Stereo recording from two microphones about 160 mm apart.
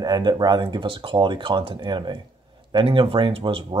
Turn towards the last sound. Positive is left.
turn(degrees=-35)  # may be behind; listen again after turning